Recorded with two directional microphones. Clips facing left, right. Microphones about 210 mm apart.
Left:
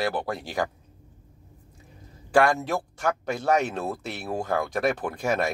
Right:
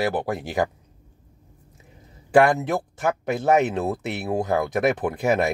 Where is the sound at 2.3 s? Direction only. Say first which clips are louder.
Right 4 dB; 20° right (ahead or behind).